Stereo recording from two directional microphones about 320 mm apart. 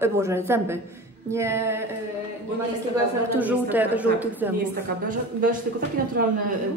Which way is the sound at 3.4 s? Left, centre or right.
Centre.